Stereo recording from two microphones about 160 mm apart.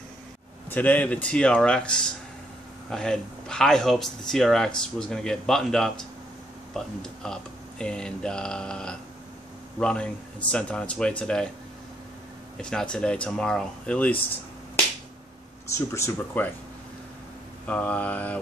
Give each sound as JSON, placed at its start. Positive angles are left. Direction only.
{"t": 0.7, "sound": "a man's voice", "side_deg": 10}
{"t": 12.5, "sound": "a man's voice", "side_deg": 5}
{"t": 15.9, "sound": "a man's voice", "side_deg": 15}
{"t": 17.6, "sound": "a man's voice", "side_deg": 10}